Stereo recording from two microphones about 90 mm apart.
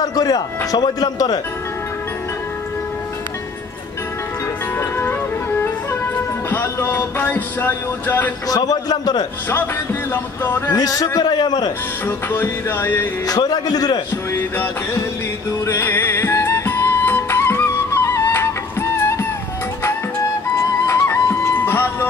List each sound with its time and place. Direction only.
0.0 s a man's voice: 45° left (ahead or behind)
4.7 s music: 30° left (ahead or behind)
6.5 s music: 25° left (ahead or behind)
8.5 s a man's voice: 45° left (ahead or behind)
10.4 s music: 25° left (ahead or behind)
10.8 s a man's voice: 40° left (ahead or behind)
12.3 s music: 25° left (ahead or behind)
13.3 s a man's voice: 45° left (ahead or behind)
15.6 s music: 25° left (ahead or behind)
20.8 s music: 30° left (ahead or behind)
21.6 s vehicle: 25° left (ahead or behind)